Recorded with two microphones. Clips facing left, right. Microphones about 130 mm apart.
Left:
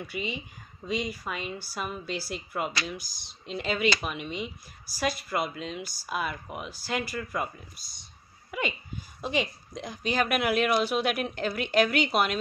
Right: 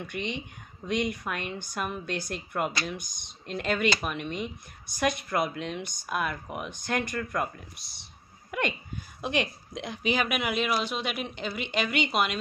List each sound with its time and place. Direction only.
0.0 s a woman's voice: 5° left (ahead or behind)
3.0 s speech: 55° right (ahead or behind)
3.5 s a woman's voice: 5° left (ahead or behind)
8.5 s a sound: centre (ahead or behind)
9.2 s a woman's voice: centre (ahead or behind)